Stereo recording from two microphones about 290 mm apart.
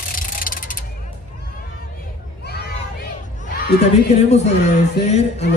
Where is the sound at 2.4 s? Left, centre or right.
Left.